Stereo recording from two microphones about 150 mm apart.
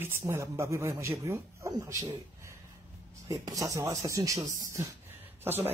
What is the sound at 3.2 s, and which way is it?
Speech, 25° right (ahead or behind).